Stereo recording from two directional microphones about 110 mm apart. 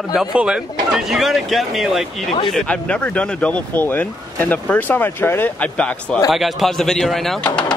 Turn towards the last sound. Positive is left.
turn(degrees=0)  # may be behind; listen again after turning